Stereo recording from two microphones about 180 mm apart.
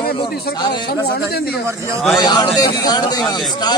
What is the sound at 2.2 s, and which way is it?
Speech, 20° left (ahead or behind).